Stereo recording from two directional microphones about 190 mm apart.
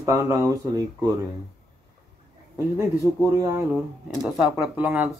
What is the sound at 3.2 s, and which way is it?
Speech, 10° right (ahead or behind).